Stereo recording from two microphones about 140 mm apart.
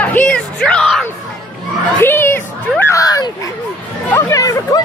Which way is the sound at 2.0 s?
15° left (ahead or behind).